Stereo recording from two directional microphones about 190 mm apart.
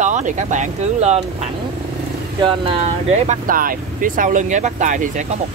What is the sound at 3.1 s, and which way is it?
Speech, 40° right (ahead or behind).